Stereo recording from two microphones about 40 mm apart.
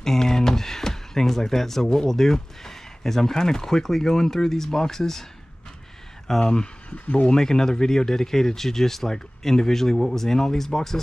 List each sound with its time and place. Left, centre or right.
0.0 s a sound: centre
1.9 s speech: centre
6.4 s speech: left
7.3 s speech: centre